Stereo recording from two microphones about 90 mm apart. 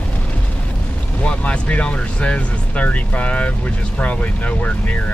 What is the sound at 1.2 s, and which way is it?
Speech, 15° left (ahead or behind).